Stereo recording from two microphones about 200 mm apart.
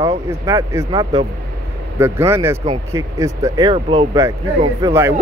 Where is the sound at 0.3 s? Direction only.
15° right (ahead or behind).